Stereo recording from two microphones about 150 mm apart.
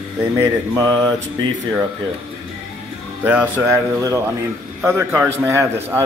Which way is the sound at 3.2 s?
10° right (ahead or behind).